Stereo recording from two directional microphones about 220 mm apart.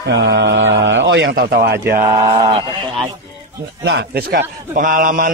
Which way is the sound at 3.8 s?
50° right (ahead or behind).